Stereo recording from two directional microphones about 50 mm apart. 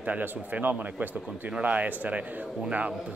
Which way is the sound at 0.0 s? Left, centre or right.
Right.